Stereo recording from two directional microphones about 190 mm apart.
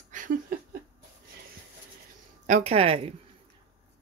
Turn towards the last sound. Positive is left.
turn(degrees=-30)  # may be behind; listen again after turning